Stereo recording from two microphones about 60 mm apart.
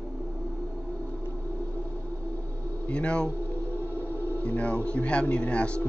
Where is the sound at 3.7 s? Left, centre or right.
Left.